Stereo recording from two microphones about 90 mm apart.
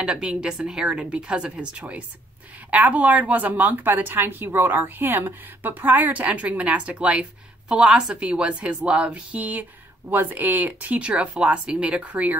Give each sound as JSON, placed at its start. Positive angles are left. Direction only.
{"t": 0.0, "sound": "a woman's voice", "side_deg": -10}